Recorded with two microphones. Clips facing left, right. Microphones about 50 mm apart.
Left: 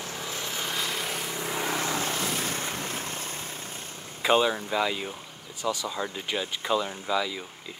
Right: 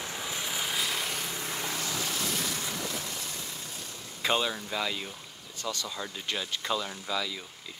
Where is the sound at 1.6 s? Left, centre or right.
Left.